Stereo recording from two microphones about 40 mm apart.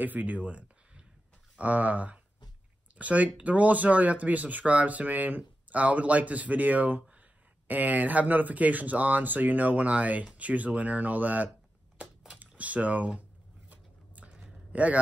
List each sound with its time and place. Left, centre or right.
0.0 s speech: right
13.7 s a sound: right
14.7 s a man's voice: right